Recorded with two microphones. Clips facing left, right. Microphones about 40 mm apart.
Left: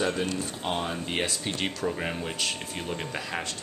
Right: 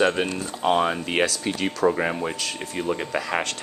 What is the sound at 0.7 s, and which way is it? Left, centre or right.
Speech, right.